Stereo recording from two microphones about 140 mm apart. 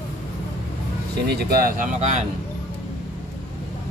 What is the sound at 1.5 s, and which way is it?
Speech, 80° right.